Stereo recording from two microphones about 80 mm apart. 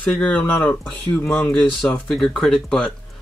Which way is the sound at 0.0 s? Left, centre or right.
Centre.